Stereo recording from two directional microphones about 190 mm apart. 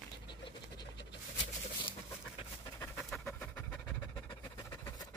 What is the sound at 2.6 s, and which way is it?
Pant, 10° left (ahead or behind).